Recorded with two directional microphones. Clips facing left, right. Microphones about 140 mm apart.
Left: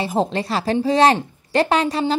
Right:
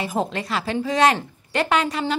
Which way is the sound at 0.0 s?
30° left (ahead or behind).